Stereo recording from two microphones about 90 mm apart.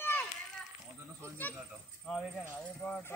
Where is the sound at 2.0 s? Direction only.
5° left (ahead or behind).